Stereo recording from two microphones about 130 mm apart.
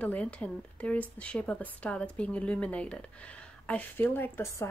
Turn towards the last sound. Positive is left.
turn(degrees=15)  # may be behind; listen again after turning